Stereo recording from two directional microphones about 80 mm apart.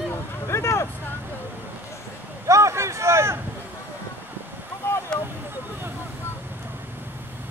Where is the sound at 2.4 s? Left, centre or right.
Right.